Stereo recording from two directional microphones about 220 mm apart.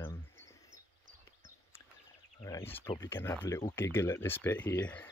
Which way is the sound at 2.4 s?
15° left (ahead or behind).